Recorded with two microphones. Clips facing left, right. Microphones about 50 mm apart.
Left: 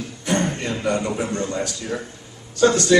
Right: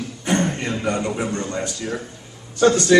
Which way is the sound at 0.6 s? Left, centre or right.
Right.